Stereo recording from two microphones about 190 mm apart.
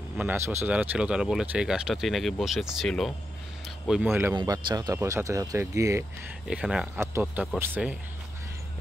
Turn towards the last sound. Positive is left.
turn(degrees=-10)  # may be behind; listen again after turning